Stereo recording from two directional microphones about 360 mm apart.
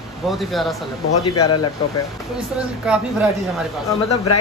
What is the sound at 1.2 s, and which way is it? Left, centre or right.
Speech, left.